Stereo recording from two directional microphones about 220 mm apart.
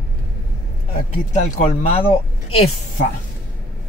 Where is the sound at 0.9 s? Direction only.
30° left (ahead or behind).